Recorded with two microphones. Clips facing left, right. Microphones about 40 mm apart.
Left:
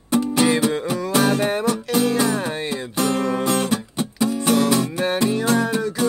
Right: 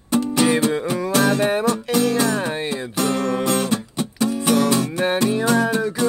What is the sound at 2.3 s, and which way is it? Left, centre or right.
Music, centre.